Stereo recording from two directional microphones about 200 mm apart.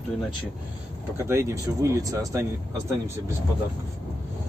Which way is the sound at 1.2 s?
15° right (ahead or behind).